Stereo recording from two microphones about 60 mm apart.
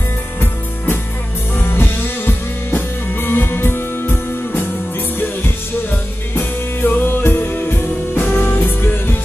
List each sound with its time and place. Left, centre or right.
1.6 s music: left
6.3 s music: left